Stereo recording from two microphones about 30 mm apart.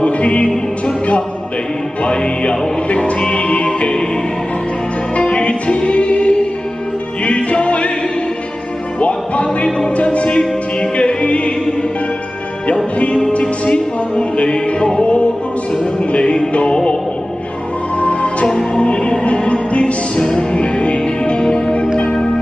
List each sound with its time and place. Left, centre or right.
0.0 s music: left
2.0 s music: left
5.1 s music: left
9.0 s music: left
13.3 s music: left
17.9 s music: left
20.2 s music: left
21.4 s music: left